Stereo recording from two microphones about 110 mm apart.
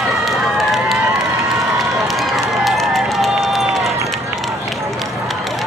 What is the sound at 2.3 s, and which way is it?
Run, centre (ahead or behind).